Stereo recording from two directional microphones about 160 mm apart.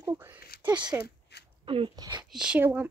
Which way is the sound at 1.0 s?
90° left.